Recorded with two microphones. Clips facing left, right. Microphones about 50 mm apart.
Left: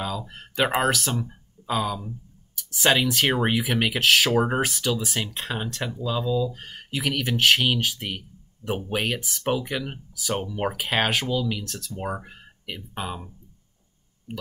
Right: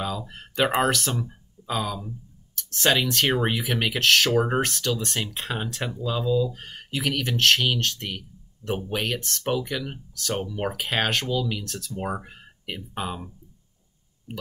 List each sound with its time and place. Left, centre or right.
0.3 s speech: centre